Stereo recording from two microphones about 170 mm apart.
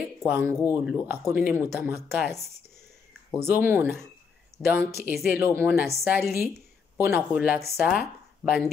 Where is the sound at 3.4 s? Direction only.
15° right (ahead or behind).